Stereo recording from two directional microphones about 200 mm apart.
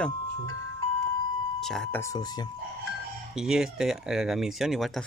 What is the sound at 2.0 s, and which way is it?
Speech, 20° left (ahead or behind).